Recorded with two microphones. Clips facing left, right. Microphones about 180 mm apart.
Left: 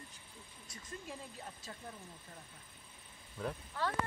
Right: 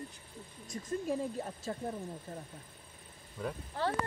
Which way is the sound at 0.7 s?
45° right (ahead or behind).